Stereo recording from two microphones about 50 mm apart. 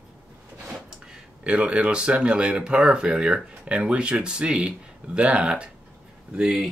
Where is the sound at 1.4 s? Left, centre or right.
Right.